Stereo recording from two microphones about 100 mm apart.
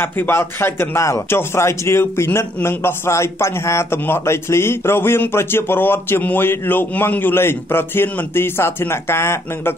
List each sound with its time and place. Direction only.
0.0 s a man's voice: 20° left (ahead or behind)